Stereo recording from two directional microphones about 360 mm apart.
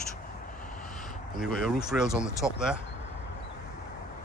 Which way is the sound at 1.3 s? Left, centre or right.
Centre.